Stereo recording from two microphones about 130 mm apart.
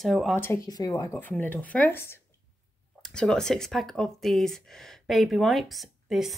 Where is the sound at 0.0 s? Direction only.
Centre (ahead or behind).